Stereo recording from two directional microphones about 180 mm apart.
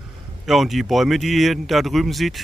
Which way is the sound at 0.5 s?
Centre (ahead or behind).